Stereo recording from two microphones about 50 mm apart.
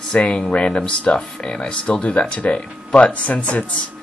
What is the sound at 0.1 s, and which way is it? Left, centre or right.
Speech, centre.